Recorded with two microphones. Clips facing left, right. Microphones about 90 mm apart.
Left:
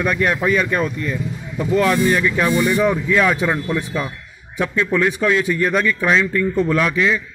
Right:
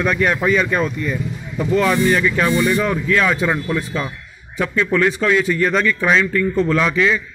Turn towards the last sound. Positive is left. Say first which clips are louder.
# right 1 dB
turn(degrees=5)  # may be behind; listen again after turning